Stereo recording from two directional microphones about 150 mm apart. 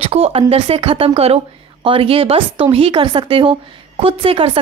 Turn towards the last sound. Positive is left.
turn(degrees=-35)  # may be behind; listen again after turning